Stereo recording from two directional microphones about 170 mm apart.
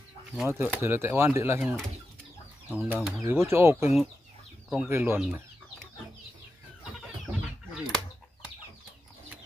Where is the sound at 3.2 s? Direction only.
15° right (ahead or behind).